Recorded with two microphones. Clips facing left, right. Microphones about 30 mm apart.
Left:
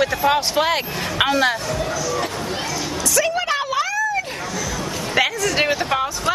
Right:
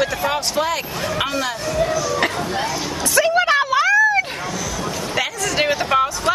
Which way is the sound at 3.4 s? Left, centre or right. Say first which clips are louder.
Right 5 dB; centre.